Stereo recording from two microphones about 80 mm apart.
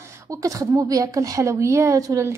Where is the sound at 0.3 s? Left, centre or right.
Right.